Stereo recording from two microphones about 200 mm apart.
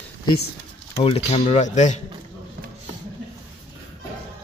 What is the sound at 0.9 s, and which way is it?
Speech, 30° left (ahead or behind).